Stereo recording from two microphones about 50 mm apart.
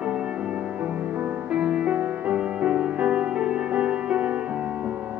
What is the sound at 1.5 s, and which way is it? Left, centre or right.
Music, right.